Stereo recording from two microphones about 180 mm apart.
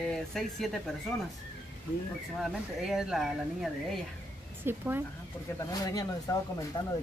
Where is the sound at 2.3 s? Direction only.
Centre (ahead or behind).